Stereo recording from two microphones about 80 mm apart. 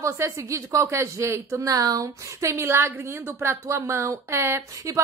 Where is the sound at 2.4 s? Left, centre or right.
Right.